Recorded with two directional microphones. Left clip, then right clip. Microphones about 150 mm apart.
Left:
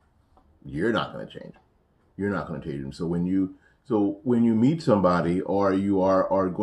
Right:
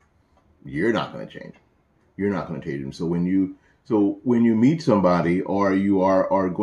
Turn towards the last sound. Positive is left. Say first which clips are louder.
# right 2 dB
turn(degrees=10)  # may be behind; listen again after turning